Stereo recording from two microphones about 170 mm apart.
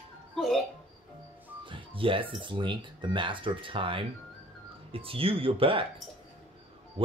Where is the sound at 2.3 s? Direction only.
30° right (ahead or behind).